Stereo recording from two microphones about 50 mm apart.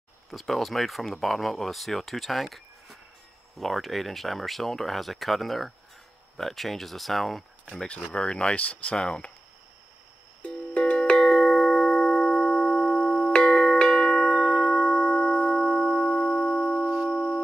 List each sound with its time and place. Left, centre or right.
0.3 s speech: centre
7.7 s speech: centre
10.7 s music: left
11.4 s music: centre
16.0 s music: left
16.8 s music: centre
17.1 s music: left